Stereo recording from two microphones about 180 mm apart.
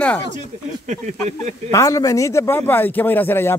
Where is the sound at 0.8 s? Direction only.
40° right (ahead or behind).